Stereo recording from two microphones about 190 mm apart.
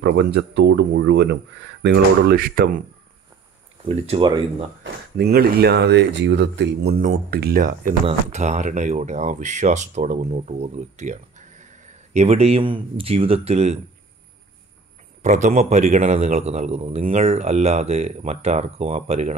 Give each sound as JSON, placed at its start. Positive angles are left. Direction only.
{"t": 0.0, "sound": "speech", "side_deg": -60}
{"t": 3.9, "sound": "speech", "side_deg": -30}
{"t": 5.1, "sound": "speech", "side_deg": -55}
{"t": 8.1, "sound": "speech", "side_deg": -35}
{"t": 15.2, "sound": "speech", "side_deg": -40}